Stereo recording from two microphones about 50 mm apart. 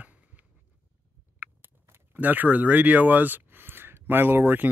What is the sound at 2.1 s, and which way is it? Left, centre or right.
Speech, right.